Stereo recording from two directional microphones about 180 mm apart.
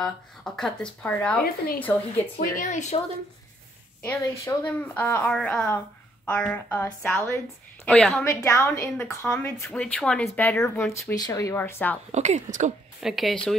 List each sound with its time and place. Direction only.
0.0 s speech: 5° left (ahead or behind)
2.3 s a woman's voice: 50° left (ahead or behind)
4.0 s speech: 15° left (ahead or behind)
8.3 s speech: 15° left (ahead or behind)
12.1 s a woman's voice: 40° right (ahead or behind)
13.0 s speech: centre (ahead or behind)